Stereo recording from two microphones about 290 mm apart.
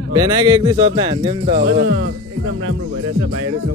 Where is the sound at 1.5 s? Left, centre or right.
Right.